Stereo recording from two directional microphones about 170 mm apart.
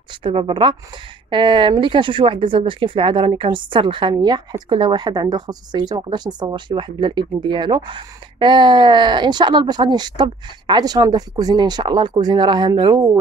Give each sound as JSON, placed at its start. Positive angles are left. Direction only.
{"t": 0.1, "sound": "speech", "side_deg": -30}